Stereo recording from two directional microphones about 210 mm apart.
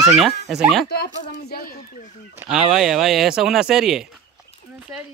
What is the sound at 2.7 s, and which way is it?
Speech, centre (ahead or behind).